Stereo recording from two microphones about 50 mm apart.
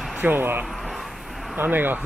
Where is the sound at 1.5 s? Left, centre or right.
Right.